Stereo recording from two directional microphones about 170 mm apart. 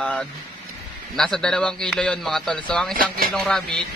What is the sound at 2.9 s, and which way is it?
Speech, 55° right (ahead or behind).